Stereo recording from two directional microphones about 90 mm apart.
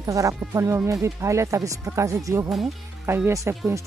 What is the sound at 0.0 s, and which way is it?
Speech, 40° right (ahead or behind).